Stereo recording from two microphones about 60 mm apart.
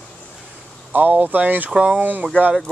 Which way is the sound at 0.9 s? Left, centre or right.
Right.